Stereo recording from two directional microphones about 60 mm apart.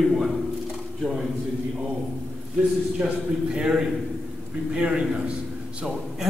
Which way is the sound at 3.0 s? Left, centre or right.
Centre.